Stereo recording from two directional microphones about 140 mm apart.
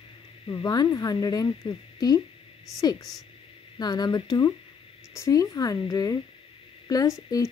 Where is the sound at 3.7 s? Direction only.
30° left (ahead or behind).